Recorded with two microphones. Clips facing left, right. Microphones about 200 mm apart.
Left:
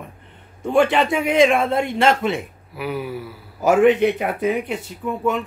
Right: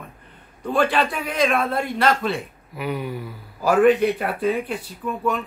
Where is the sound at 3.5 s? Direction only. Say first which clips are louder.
Left 1 dB; 20° left (ahead or behind).